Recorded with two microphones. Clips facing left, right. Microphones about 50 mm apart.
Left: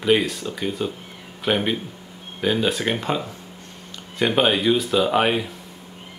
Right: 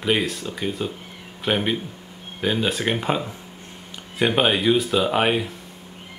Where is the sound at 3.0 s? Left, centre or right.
Centre.